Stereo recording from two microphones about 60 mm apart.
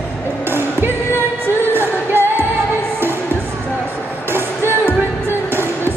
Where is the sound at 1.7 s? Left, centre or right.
Right.